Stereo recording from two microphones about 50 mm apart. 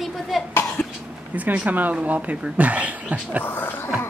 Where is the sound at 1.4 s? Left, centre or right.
Right.